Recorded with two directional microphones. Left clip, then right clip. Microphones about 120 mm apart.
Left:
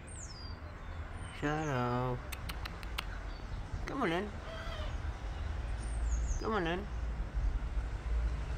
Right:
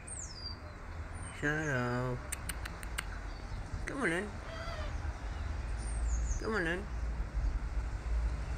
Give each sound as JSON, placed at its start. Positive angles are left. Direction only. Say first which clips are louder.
{"t": 1.4, "sound": "speech", "louder": "right 1 dB", "side_deg": 15}
{"t": 3.8, "sound": "speech", "louder": "even", "side_deg": 15}
{"t": 6.4, "sound": "speech", "louder": "even", "side_deg": 20}